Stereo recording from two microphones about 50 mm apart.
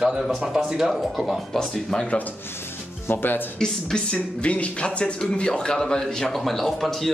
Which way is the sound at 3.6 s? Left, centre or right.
Centre.